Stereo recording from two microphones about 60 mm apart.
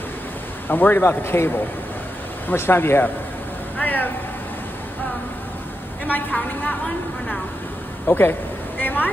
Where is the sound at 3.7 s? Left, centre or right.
Left.